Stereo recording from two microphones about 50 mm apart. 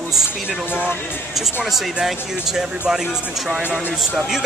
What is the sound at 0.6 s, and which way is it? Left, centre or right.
Speech, left.